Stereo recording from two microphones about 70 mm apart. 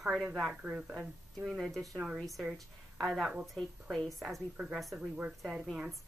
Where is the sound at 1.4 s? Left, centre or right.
Centre.